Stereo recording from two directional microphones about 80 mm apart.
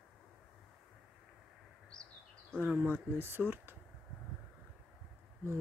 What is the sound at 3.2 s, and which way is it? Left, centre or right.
Speech, right.